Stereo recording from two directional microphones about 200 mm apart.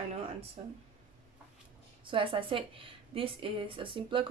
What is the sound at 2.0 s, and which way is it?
A woman's voice, 25° right (ahead or behind).